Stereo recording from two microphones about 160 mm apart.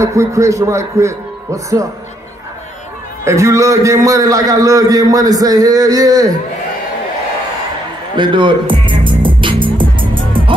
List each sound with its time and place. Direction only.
0.0 s a man's voice: 20° right (ahead or behind)
3.3 s a man's voice: 20° right (ahead or behind)
8.2 s music: 30° right (ahead or behind)